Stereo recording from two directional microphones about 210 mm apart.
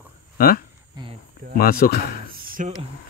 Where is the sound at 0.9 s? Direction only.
25° right (ahead or behind).